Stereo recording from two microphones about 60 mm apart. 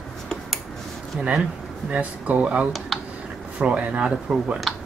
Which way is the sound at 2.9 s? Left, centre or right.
Centre.